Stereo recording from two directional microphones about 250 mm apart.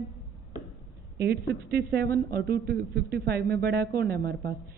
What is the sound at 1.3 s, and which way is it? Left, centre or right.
A woman's voice, right.